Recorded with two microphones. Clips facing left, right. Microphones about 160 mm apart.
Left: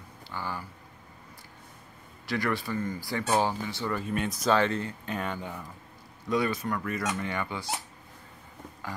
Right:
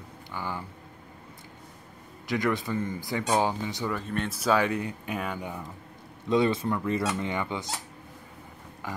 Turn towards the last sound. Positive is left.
turn(degrees=-20)  # may be behind; listen again after turning